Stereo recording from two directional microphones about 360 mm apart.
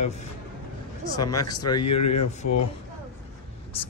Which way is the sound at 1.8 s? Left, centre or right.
Left.